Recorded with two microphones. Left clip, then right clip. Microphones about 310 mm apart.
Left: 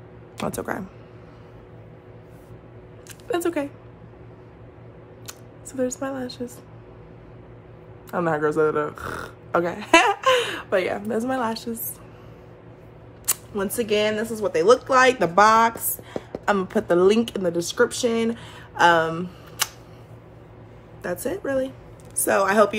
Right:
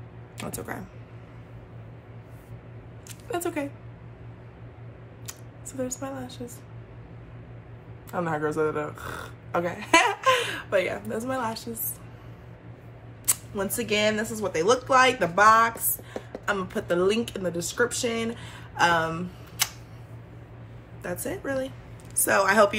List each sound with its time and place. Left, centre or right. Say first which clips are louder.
0.4 s speech: left 8 dB; centre
3.3 s speech: left 5 dB; centre
5.2 s a sound: left 1 dB; centre
8.1 s speech: left 5 dB; centre
13.3 s speech: left 2 dB; centre
21.0 s speech: left 5 dB; centre